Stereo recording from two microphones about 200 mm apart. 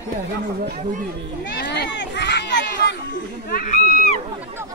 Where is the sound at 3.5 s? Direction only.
40° left (ahead or behind).